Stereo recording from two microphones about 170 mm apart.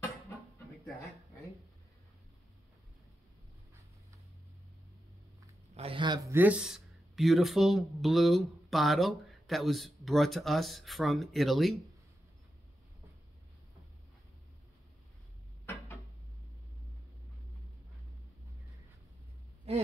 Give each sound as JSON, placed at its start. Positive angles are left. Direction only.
{"t": 5.8, "sound": "speech", "side_deg": -30}
{"t": 6.3, "sound": "speech", "side_deg": -10}